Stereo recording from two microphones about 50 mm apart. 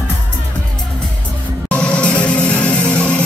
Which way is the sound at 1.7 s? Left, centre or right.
Left.